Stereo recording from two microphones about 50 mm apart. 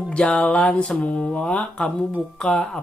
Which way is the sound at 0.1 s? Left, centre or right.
Centre.